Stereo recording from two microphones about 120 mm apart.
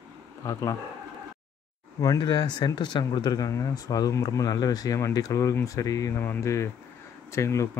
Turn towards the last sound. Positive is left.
turn(degrees=25)  # may be behind; listen again after turning